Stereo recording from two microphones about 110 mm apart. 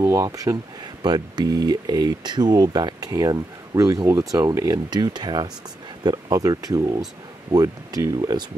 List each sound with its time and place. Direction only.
0.0 s speech: 25° right (ahead or behind)
1.0 s speech: 40° right (ahead or behind)